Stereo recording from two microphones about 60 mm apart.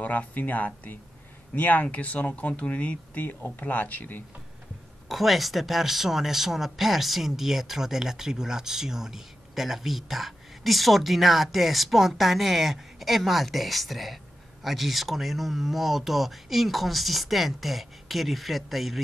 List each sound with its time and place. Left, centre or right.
0.0 s speech: left
5.0 s speech: centre